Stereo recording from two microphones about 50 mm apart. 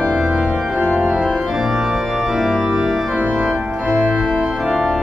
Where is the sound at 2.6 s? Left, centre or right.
Centre.